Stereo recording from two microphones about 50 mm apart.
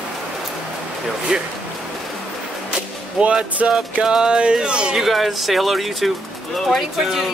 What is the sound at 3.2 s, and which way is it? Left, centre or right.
Speech, right.